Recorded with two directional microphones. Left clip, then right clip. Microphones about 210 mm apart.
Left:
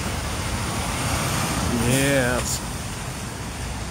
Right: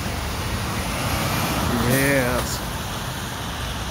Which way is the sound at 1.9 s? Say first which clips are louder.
Even; 5° left (ahead or behind).